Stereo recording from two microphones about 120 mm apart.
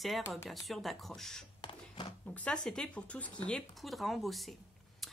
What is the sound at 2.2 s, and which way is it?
Speech, 10° left (ahead or behind).